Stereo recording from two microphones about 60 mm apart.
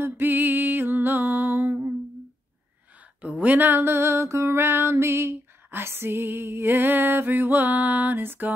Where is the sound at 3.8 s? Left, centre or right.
Right.